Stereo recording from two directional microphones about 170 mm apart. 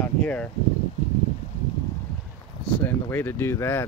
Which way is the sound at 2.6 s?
10° left (ahead or behind).